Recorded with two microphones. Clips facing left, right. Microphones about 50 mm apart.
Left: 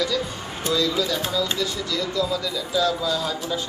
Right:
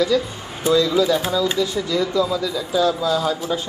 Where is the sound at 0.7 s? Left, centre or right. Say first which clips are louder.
Right 7 dB; centre.